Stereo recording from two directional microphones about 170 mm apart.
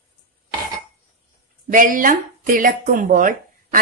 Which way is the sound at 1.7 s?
55° right (ahead or behind).